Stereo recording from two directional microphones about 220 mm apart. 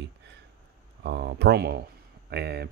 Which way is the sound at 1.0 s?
50° right (ahead or behind).